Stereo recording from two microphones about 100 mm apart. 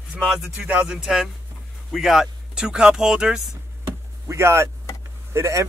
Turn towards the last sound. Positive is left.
turn(degrees=-30)  # may be behind; listen again after turning